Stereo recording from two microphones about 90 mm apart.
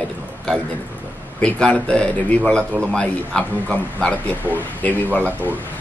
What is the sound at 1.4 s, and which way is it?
Speech, 10° left (ahead or behind).